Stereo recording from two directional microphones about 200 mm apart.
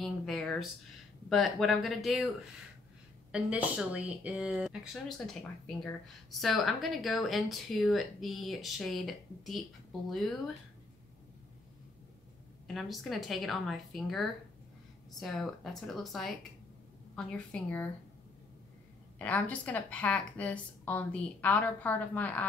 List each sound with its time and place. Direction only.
0.0 s a sound: centre (ahead or behind)
1.3 s speech: centre (ahead or behind)
3.3 s speech: 5° right (ahead or behind)
6.4 s speech: centre (ahead or behind)
12.6 s a woman's voice: centre (ahead or behind)
19.1 s a woman's voice: 5° left (ahead or behind)